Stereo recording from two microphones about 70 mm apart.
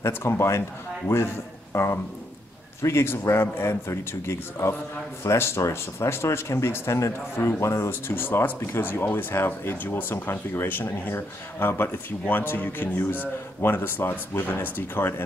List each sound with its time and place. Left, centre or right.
0.0 s a man's voice: left
8.1 s speech: left